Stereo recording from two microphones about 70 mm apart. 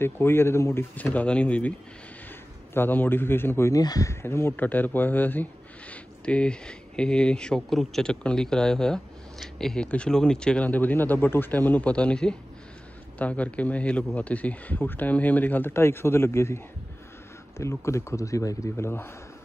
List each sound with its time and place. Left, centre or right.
0.0 s a man's voice: left
0.9 s speech: left
2.7 s a man's voice: left
3.7 s speech: left
4.1 s speech: left; by 10.7 s centre
10.7 s speech: left